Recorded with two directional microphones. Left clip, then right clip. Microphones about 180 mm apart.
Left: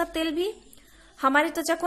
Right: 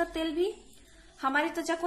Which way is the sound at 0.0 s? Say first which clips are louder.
Left 3 dB; 50° left (ahead or behind).